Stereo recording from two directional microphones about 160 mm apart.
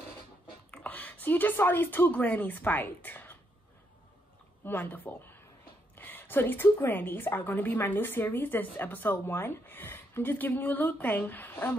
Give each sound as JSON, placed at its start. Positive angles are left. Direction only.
{"t": 0.7, "sound": "a sound", "side_deg": 10}
{"t": 1.2, "sound": "a woman's voice", "side_deg": 10}
{"t": 4.6, "sound": "a woman's voice", "side_deg": 10}